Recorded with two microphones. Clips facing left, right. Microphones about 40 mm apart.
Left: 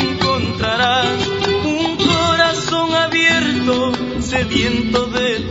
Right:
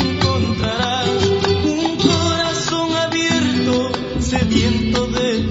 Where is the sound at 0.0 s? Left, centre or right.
Left.